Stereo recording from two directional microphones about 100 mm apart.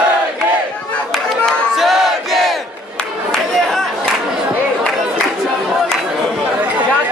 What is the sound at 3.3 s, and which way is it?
Crowd, 5° left (ahead or behind).